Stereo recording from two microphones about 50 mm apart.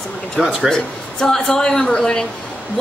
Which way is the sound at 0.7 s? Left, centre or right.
Centre.